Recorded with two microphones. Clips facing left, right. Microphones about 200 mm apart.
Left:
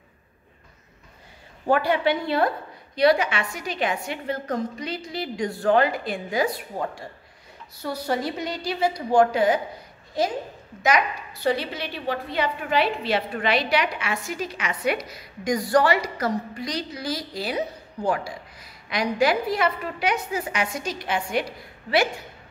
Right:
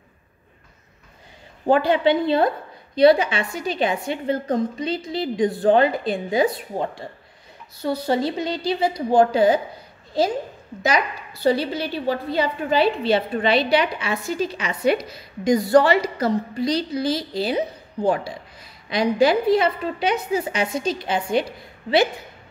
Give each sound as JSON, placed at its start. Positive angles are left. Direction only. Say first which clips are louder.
{"t": 1.7, "sound": "a woman's voice", "louder": "right 4 dB", "side_deg": -20}
{"t": 11.4, "sound": "a woman's voice", "louder": "right 5 dB", "side_deg": -35}